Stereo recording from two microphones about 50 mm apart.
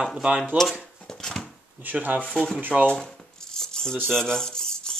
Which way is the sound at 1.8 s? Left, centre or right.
Right.